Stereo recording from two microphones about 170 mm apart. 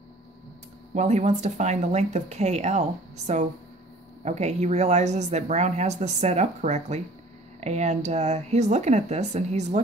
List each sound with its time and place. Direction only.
0.9 s speech: 40° right (ahead or behind)